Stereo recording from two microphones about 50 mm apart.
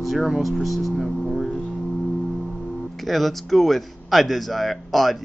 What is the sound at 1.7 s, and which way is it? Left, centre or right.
Music, centre.